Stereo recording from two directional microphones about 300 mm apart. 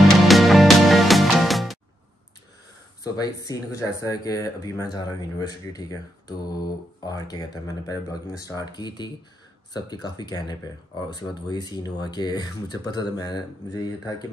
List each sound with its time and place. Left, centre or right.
0.0 s music: centre
3.0 s speech: centre